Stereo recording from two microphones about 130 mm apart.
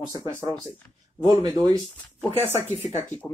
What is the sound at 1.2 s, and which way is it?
Speech, 30° right (ahead or behind).